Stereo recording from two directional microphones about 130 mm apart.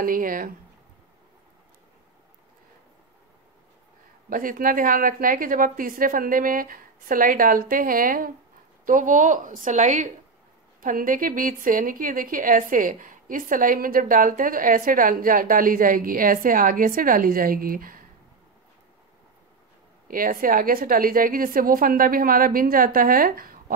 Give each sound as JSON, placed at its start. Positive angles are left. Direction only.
{"t": 0.0, "sound": "a woman's voice", "side_deg": -90}
{"t": 4.3, "sound": "a woman's voice", "side_deg": -90}
{"t": 10.8, "sound": "a woman's voice", "side_deg": -90}
{"t": 20.1, "sound": "a woman's voice", "side_deg": -90}